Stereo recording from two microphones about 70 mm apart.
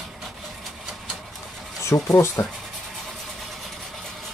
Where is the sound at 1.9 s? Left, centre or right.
Left.